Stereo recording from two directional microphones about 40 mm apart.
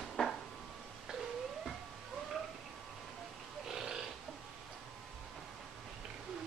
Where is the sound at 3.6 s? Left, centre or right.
Centre.